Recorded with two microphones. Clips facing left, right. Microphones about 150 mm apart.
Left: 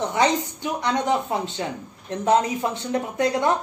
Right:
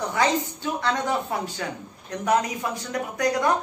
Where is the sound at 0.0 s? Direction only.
20° left (ahead or behind).